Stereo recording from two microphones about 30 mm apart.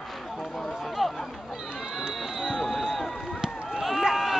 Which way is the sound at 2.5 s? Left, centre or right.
Centre.